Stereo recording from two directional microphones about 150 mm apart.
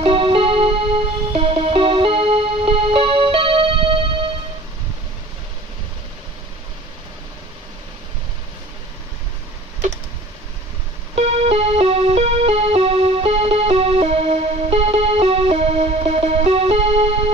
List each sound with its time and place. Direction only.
0.0 s music: 40° right (ahead or behind)
11.1 s music: 45° right (ahead or behind)